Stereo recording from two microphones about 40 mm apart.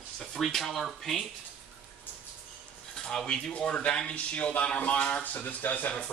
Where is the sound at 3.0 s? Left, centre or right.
Centre.